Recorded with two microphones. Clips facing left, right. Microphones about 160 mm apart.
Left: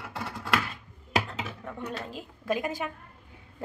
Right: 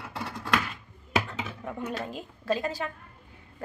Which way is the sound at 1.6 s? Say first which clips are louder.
Right 5 dB; 5° right (ahead or behind).